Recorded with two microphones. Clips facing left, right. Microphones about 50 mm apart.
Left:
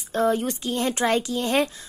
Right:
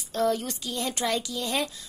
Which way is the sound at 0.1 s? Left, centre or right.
Left.